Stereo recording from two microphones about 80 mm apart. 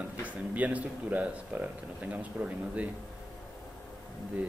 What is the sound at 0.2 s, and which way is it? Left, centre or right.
A man's voice, centre.